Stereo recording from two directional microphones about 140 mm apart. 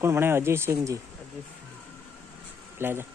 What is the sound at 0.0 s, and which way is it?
Speech, 20° right (ahead or behind).